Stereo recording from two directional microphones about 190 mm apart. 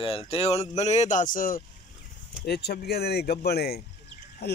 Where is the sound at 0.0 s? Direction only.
30° left (ahead or behind); by 1.6 s 45° left (ahead or behind).